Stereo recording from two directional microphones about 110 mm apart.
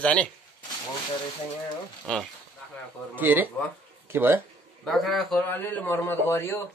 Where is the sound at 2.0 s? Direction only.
5° left (ahead or behind).